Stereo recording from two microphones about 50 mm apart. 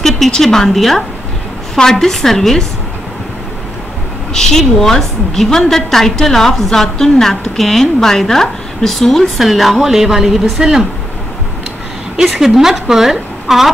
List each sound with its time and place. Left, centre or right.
0.0 s a woman's voice: centre
4.3 s a woman's voice: centre
12.2 s a woman's voice: centre